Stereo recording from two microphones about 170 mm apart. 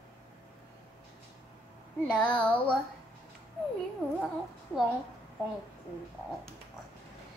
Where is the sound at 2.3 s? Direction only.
10° left (ahead or behind).